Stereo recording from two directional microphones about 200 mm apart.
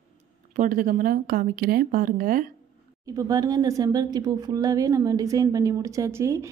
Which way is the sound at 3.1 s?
20° right (ahead or behind).